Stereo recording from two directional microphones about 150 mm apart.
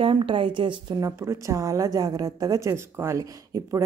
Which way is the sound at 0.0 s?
35° right (ahead or behind).